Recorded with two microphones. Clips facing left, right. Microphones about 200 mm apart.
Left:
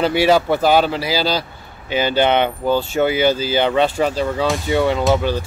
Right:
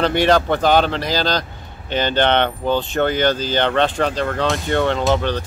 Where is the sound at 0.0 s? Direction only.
5° left (ahead or behind).